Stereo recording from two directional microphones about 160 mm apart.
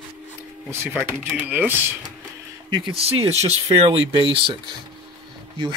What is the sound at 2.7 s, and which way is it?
Speech, 35° right (ahead or behind).